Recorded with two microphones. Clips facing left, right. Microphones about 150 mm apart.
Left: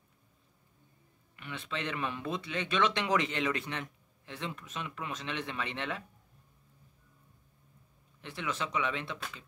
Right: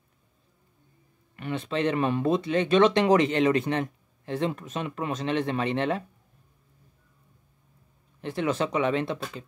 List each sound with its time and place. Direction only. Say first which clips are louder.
1.3 s speech: right 10 dB; 45° right (ahead or behind)
8.2 s speech: right 10 dB; 45° right (ahead or behind)